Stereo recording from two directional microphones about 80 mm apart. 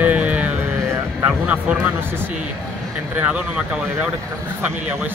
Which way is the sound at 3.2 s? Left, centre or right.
Right.